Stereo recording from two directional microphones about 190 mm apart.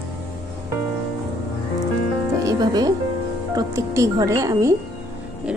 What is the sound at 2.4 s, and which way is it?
Music, 20° right (ahead or behind).